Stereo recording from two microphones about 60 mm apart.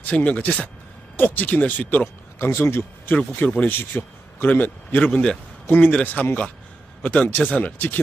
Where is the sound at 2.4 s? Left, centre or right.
Left.